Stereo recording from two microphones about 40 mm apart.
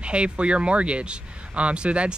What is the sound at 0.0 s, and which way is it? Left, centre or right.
Speech, right.